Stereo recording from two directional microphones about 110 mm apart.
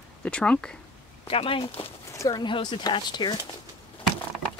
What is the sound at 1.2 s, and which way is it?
Speech, 55° left (ahead or behind).